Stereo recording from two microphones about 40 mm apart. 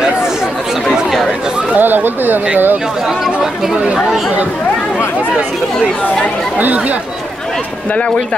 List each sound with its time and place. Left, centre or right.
1.8 s speech: right
3.8 s speech: centre